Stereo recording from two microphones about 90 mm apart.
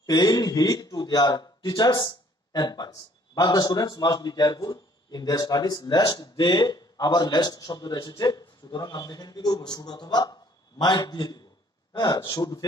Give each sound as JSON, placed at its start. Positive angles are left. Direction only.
{"t": 0.0, "sound": "a man's voice", "side_deg": 50}